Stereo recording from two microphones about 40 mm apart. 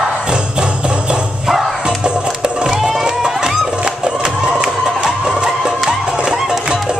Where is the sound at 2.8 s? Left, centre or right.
Centre.